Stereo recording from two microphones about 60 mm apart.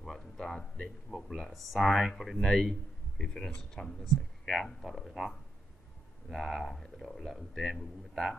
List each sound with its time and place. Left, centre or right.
0.0 s speech: centre
1.1 s speech: left
1.5 s a man's voice: centre
6.3 s a man's voice: centre